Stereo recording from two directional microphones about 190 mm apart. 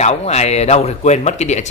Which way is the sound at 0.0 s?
35° left (ahead or behind).